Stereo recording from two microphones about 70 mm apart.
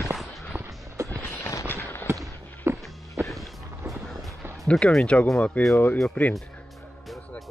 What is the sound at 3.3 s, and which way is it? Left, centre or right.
Music, centre.